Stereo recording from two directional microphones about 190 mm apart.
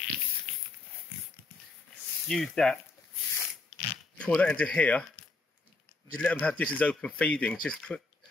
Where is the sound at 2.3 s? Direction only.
5° left (ahead or behind).